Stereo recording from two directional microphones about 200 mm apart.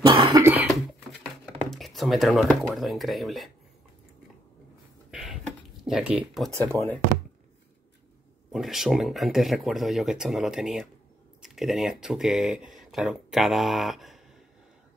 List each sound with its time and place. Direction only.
0.0 s cough: 25° right (ahead or behind)
0.4 s cough: 10° right (ahead or behind)
1.4 s speech: centre (ahead or behind)
5.1 s a sound: 5° right (ahead or behind)
5.9 s speech: 5° right (ahead or behind)
8.5 s speech: centre (ahead or behind)